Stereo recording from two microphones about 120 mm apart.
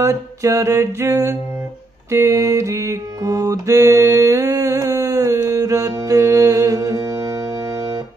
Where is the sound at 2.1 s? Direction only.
25° right (ahead or behind).